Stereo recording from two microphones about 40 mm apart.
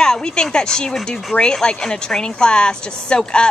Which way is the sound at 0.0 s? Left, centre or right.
Centre.